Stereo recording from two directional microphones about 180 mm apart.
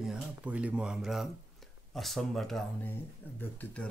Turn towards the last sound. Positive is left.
turn(degrees=10)  # may be behind; listen again after turning